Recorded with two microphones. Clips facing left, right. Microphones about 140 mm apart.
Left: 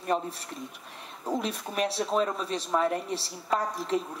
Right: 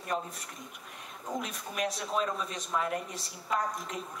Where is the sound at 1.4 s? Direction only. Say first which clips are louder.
Left 5 dB; 30° left (ahead or behind).